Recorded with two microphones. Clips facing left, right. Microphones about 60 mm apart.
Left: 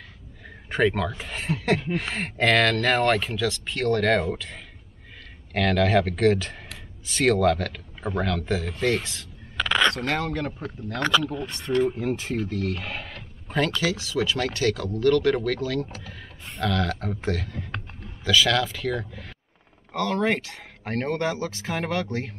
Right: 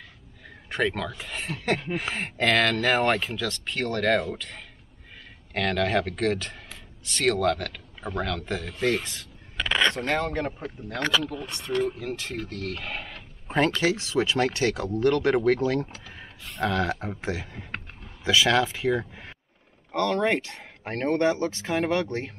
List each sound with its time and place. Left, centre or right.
0.7 s speech: centre
10.3 s speech: centre
11.2 s speech: centre
12.0 s speech: centre
12.4 s speech: centre
13.5 s speech: right
19.9 s speech: centre
21.6 s speech: centre